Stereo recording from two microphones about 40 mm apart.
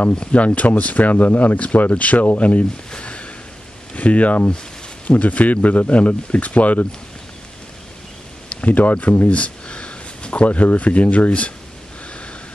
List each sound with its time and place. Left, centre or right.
0.1 s speech: left
0.4 s speech: left
2.9 s a sound: left
3.9 s speech: left
8.5 s a sound: left
9.0 s speech: left
9.3 s speech: left